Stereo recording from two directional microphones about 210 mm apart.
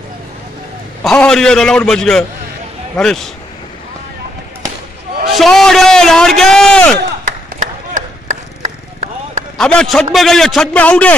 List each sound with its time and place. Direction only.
1.0 s a man's voice: 5° left (ahead or behind)
5.3 s a man's voice: centre (ahead or behind)
7.5 s a sound: 35° right (ahead or behind)
9.6 s a man's voice: 5° left (ahead or behind)